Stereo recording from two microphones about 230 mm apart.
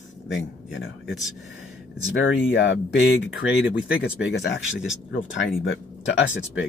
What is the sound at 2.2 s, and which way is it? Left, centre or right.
Speech, left.